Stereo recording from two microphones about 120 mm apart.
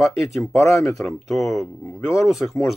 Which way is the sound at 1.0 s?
Centre (ahead or behind).